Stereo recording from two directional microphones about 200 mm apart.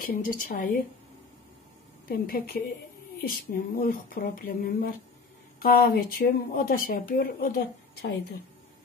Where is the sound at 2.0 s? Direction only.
50° left (ahead or behind).